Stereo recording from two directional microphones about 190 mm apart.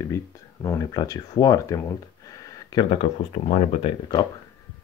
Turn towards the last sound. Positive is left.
turn(degrees=25)  # may be behind; listen again after turning